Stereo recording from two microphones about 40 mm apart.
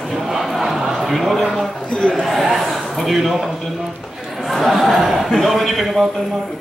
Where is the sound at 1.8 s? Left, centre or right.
Centre.